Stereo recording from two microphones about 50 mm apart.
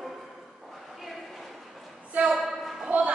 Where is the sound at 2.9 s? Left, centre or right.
Right.